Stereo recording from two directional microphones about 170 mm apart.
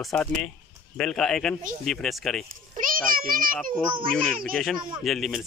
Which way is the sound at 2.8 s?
55° right (ahead or behind).